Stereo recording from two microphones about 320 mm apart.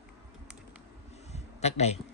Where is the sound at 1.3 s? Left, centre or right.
Left.